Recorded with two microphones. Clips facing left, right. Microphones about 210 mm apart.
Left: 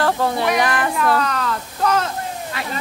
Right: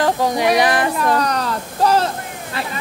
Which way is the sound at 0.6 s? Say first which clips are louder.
Right 3 dB; 15° right (ahead or behind).